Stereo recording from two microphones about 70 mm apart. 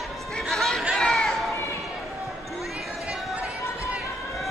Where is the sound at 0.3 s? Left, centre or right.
Centre.